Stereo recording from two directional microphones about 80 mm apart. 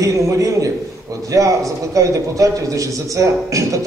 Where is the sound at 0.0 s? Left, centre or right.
Right.